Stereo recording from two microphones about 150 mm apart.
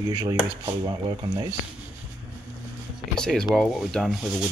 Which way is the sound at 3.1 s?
5° left (ahead or behind).